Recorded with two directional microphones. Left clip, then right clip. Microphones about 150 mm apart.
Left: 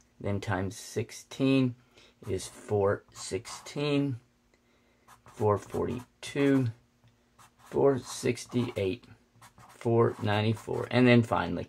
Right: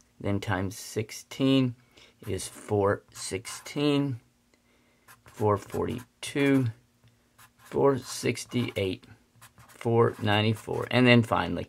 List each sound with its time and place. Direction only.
0.2 s speech: 20° right (ahead or behind)
5.2 s speech: 20° right (ahead or behind)
7.7 s speech: 15° right (ahead or behind)